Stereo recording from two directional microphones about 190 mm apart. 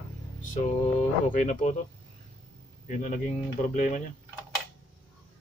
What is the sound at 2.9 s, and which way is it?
Speech, 40° left (ahead or behind).